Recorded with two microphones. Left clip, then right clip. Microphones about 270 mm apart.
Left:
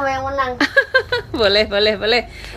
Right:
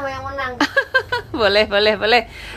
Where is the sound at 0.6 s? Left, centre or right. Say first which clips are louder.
Left 1 dB; centre.